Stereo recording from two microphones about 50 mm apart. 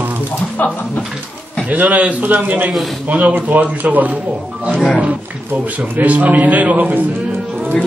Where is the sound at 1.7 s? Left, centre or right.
Right.